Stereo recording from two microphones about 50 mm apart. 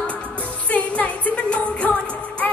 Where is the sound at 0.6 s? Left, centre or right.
Left.